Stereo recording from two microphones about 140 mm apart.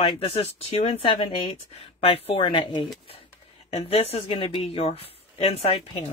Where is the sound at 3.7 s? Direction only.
45° left (ahead or behind).